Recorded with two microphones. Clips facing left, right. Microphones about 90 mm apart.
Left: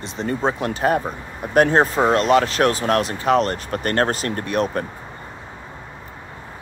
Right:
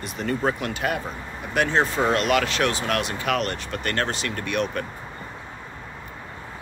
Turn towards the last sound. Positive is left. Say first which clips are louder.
# left 4 dB
turn(degrees=35)  # may be behind; listen again after turning